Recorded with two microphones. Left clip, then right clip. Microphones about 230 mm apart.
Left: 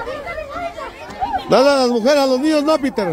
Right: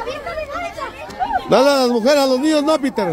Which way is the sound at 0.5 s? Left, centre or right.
Right.